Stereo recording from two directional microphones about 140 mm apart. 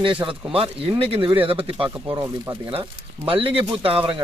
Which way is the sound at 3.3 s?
40° right (ahead or behind).